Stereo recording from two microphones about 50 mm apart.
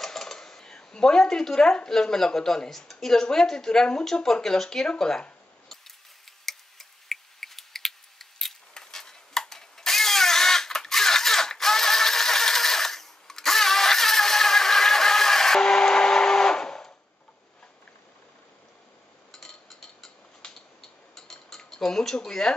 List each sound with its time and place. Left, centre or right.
0.0 s speech: centre
6.4 s tick: centre
19.3 s a sound: centre